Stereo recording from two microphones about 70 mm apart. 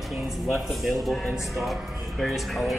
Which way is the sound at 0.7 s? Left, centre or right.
Centre.